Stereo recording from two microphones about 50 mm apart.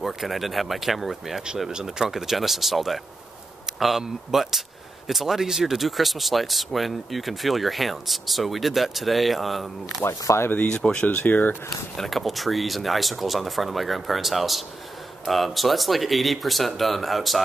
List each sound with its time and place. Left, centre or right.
0.0 s speech: centre
1.7 s speech: centre
4.0 s speech: centre
10.0 s speech: left
10.7 s speech: centre
11.1 s speech: left
12.0 s speech: centre